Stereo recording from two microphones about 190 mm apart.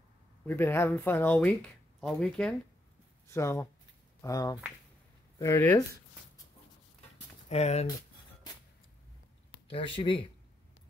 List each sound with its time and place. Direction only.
0.5 s speech: 10° left (ahead or behind)
3.3 s speech: 15° left (ahead or behind)
7.4 s speech: 35° left (ahead or behind)
9.7 s speech: 25° left (ahead or behind)